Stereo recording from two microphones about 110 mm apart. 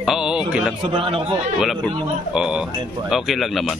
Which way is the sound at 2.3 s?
5° right (ahead or behind).